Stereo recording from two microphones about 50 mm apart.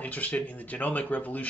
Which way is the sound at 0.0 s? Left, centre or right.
Left.